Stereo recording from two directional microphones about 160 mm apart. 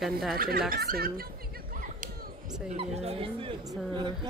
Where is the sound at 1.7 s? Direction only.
55° right (ahead or behind).